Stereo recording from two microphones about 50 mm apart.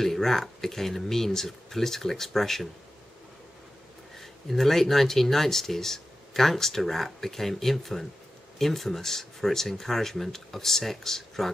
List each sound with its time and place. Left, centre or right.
0.0 s speech: centre
4.2 s speech: centre